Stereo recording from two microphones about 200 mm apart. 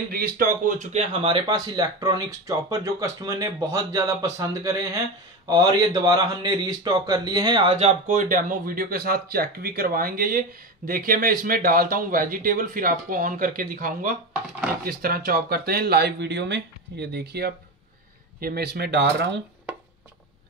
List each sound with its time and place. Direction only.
0.1 s a man's voice: 50° right (ahead or behind)